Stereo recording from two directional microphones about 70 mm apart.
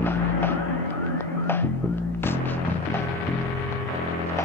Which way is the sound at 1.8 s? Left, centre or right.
Left.